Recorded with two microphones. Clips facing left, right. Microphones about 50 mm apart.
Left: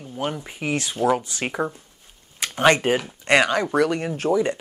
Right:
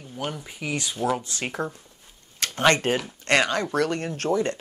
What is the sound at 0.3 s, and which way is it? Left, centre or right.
Speech, left.